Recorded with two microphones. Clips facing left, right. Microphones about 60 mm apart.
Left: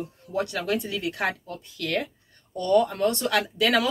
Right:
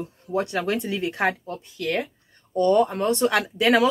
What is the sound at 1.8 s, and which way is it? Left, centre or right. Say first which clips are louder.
Speech: right 2 dB; centre.